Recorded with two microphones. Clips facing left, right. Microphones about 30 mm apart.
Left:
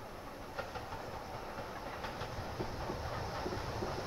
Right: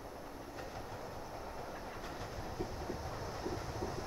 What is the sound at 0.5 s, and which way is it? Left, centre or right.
Train, left.